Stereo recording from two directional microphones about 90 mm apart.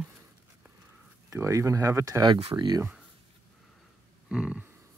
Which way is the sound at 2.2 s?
75° right (ahead or behind).